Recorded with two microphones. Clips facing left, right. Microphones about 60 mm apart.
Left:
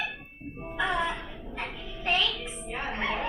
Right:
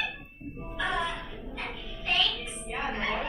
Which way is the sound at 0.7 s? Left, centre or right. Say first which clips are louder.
Left 2 dB; centre.